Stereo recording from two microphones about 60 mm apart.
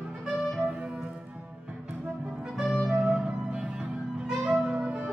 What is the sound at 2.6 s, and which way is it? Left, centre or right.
Music, centre.